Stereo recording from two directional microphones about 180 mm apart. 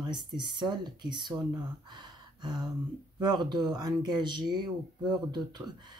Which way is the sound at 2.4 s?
25° right (ahead or behind).